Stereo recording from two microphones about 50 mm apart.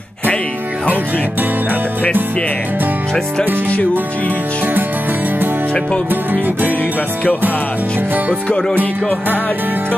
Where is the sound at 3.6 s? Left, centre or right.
Left.